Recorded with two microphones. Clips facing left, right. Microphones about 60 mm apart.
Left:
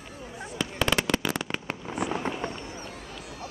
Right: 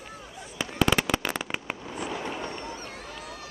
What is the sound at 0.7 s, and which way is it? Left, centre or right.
Fireworks, centre.